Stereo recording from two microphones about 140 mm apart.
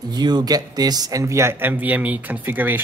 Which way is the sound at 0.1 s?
30° right (ahead or behind).